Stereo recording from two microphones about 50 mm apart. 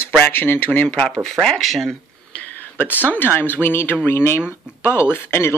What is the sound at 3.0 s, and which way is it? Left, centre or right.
Speech, left.